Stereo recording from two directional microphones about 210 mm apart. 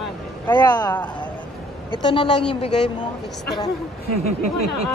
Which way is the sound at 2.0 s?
25° left (ahead or behind).